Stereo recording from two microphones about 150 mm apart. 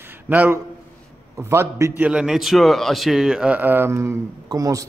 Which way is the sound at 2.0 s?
5° right (ahead or behind).